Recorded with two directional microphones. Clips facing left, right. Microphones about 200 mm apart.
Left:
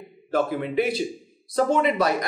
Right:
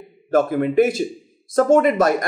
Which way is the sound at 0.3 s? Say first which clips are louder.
Right 6 dB; 50° right (ahead or behind).